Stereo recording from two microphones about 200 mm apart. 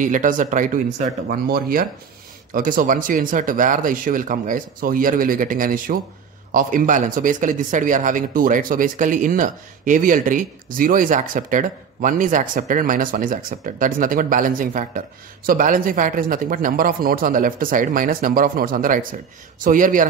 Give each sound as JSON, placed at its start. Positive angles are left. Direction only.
{"t": 0.0, "sound": "speech", "side_deg": -40}